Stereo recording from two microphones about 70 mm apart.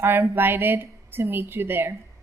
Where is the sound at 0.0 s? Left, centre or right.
Right.